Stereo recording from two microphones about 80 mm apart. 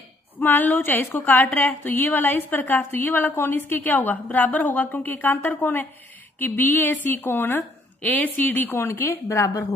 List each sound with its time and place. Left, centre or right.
0.4 s speech: left
8.6 s a woman's voice: left